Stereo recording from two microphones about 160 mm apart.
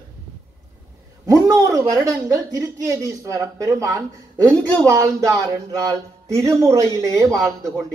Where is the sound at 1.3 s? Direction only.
20° right (ahead or behind).